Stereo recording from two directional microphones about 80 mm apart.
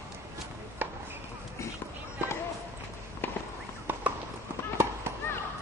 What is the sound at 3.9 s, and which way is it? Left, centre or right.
Clip-clop, right.